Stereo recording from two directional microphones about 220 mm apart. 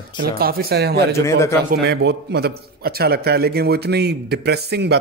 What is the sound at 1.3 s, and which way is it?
Speech, 15° left (ahead or behind).